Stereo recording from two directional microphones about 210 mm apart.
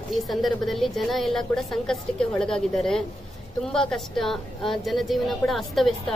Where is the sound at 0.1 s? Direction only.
Centre (ahead or behind).